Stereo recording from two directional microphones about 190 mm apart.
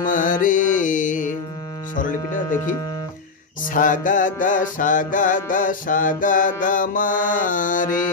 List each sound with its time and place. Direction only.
0.0 s music: 45° left (ahead or behind)
2.0 s speech: 45° left (ahead or behind)
3.6 s music: 45° left (ahead or behind)